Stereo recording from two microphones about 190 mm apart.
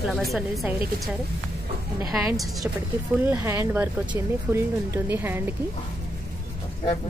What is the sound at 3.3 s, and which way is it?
Speech, 10° right (ahead or behind).